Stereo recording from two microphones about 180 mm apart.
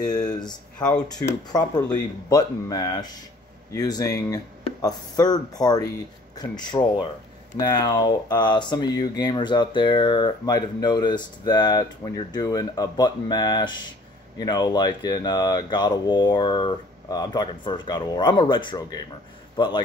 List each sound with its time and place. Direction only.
1.0 s a man's voice: 20° left (ahead or behind)